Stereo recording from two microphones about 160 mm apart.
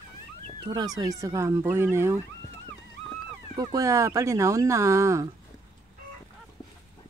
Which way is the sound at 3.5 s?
25° right (ahead or behind).